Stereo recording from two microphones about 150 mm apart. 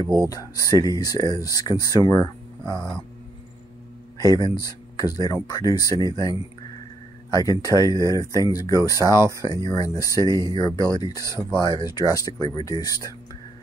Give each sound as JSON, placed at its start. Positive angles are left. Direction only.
{"t": 0.0, "sound": "speech", "side_deg": -20}
{"t": 0.3, "sound": "speech", "side_deg": 25}
{"t": 4.2, "sound": "speech", "side_deg": 25}
{"t": 7.3, "sound": "speech", "side_deg": 25}